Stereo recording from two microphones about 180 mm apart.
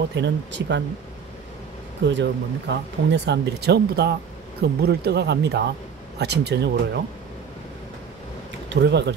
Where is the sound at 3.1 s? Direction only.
70° right (ahead or behind).